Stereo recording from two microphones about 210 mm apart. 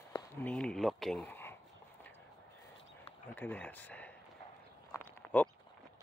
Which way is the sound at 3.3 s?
10° left (ahead or behind).